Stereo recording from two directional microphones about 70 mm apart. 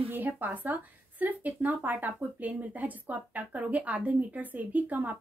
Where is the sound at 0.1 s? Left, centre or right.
Right.